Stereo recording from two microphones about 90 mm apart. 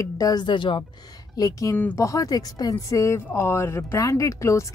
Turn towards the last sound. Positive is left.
turn(degrees=35)  # may be behind; listen again after turning